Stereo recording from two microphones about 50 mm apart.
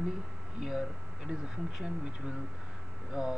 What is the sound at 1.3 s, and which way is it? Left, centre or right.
Speech, centre.